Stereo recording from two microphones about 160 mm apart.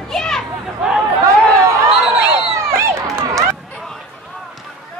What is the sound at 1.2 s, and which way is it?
Chatter, 20° right (ahead or behind).